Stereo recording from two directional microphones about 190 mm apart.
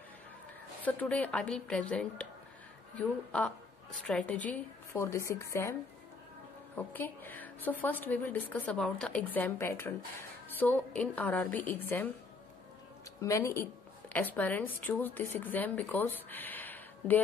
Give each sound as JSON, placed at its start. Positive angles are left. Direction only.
{"t": 0.8, "sound": "a woman's voice", "side_deg": 5}
{"t": 3.3, "sound": "a woman's voice", "side_deg": 5}
{"t": 13.2, "sound": "a woman's voice", "side_deg": 15}